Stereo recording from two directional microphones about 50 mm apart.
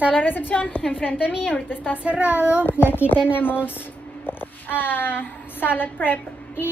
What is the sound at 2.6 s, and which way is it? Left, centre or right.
A woman's voice, left.